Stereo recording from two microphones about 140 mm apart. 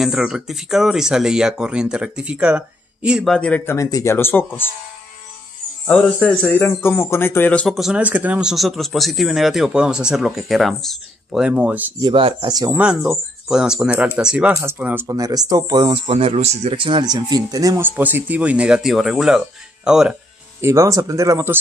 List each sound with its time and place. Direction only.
0.0 s speech: 5° right (ahead or behind)
3.3 s speech: 10° left (ahead or behind)
3.7 s speech: 20° left (ahead or behind)
5.9 s speech: 10° left (ahead or behind)
7.6 s speech: centre (ahead or behind)
12.0 s speech: 40° right (ahead or behind)
12.7 s speech: 5° right (ahead or behind)
15.0 s speech: 25° right (ahead or behind)
16.1 s speech: 45° right (ahead or behind)
16.7 s speech: 35° right (ahead or behind); by 20.2 s 5° right (ahead or behind)
20.6 s speech: 20° right (ahead or behind)